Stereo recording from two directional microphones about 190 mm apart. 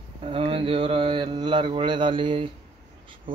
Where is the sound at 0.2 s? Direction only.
25° right (ahead or behind).